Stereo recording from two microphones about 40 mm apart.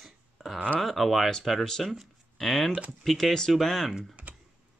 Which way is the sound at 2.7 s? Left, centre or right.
Right.